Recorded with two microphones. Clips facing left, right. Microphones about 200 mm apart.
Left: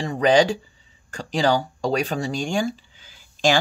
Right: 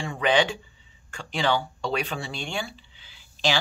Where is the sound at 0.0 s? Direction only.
40° left (ahead or behind).